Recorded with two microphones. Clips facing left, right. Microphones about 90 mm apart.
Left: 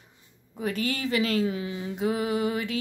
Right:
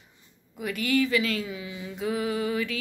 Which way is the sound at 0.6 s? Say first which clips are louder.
Right 3 dB; 35° left (ahead or behind).